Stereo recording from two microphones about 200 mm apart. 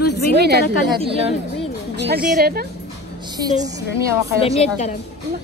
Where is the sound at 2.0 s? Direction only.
55° right (ahead or behind).